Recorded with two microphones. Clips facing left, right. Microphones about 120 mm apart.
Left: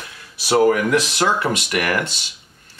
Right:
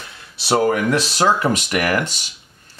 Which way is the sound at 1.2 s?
35° right (ahead or behind).